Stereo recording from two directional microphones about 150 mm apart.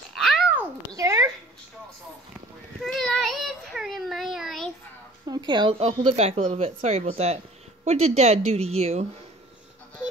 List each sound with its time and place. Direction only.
0.1 s babbling: centre (ahead or behind)
0.6 s a sound: 20° right (ahead or behind)
2.8 s child singing: 5° left (ahead or behind)
5.2 s speech: 25° right (ahead or behind); by 9.0 s 45° right (ahead or behind)